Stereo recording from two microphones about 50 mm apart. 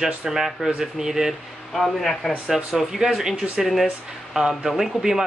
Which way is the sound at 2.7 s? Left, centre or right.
Centre.